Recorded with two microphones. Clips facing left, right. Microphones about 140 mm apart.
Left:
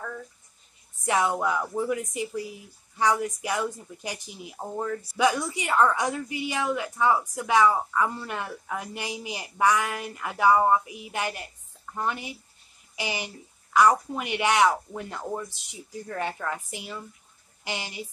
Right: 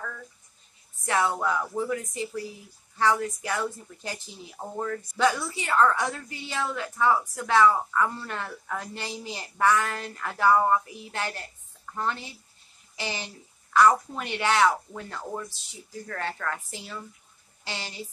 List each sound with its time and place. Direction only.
1.0 s speech: 15° left (ahead or behind)